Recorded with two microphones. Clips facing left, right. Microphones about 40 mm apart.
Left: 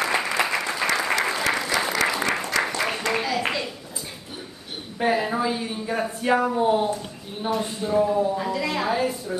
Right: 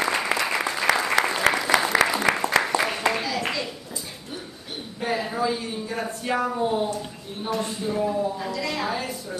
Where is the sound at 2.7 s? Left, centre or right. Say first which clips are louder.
Right 3 dB; right.